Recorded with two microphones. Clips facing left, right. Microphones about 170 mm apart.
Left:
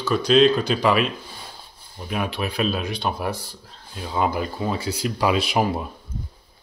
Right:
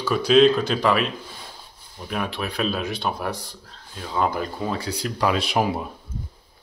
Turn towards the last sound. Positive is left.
turn(degrees=0)  # may be behind; listen again after turning